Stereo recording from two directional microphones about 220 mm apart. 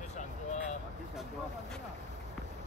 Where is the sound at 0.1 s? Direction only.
30° left (ahead or behind).